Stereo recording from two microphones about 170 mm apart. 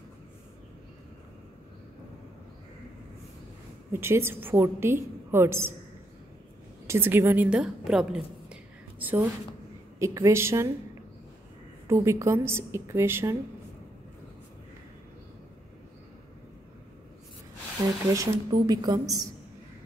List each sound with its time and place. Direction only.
3.9 s a woman's voice: 15° right (ahead or behind)
6.9 s a woman's voice: 15° right (ahead or behind)
11.9 s a woman's voice: 15° right (ahead or behind)
18.1 s a woman's voice: 20° right (ahead or behind)